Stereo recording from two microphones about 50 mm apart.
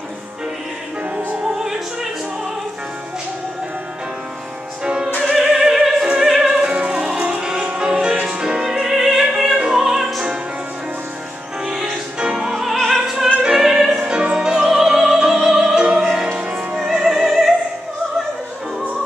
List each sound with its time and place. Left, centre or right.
1.1 s opera: centre
4.8 s music: centre
5.2 s opera: centre
6.1 s music: centre
11.6 s music: centre
12.7 s opera: centre
13.0 s opera: centre
13.7 s music: centre
14.0 s opera: centre
16.0 s music: centre